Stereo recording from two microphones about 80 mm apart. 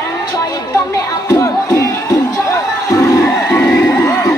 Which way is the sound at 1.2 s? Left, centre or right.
Left.